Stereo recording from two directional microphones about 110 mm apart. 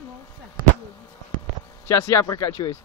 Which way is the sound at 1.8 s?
25° left (ahead or behind).